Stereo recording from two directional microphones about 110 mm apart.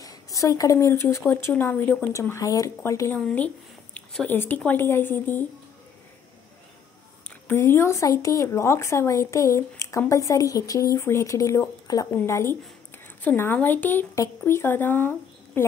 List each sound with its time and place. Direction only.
0.0 s speech: 35° left (ahead or behind)
3.2 s a sound: 10° left (ahead or behind)
4.4 s a woman's voice: 15° left (ahead or behind)
7.2 s a woman's voice: 20° left (ahead or behind)